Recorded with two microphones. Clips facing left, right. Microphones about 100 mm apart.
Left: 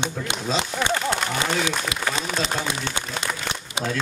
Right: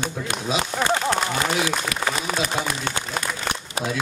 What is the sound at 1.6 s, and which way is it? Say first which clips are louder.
Speech: right 1 dB; 20° left (ahead or behind).